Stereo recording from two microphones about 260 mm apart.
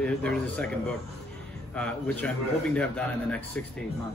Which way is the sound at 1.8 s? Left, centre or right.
Centre.